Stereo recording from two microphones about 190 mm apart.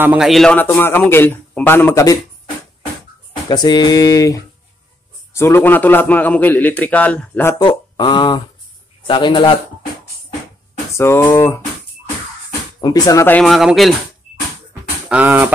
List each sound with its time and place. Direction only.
0.0 s a man's voice: 5° right (ahead or behind); by 2.1 s 15° left (ahead or behind)
3.4 s a man's voice: 20° left (ahead or behind)
7.6 s speech: 25° left (ahead or behind)
11.0 s a man's voice: 15° left (ahead or behind)
12.8 s speech: 20° left (ahead or behind)
13.4 s speech: centre (ahead or behind)
14.7 s a sound: 10° right (ahead or behind)